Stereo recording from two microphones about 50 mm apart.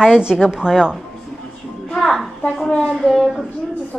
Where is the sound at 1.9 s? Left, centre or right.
Centre.